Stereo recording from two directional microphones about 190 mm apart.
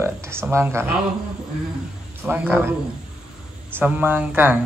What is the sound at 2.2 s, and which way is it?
Speech, 10° right (ahead or behind).